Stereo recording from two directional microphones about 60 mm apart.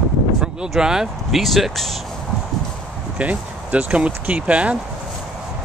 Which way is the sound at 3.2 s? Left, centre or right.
Right.